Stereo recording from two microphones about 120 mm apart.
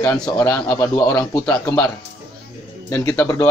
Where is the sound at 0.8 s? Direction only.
30° left (ahead or behind).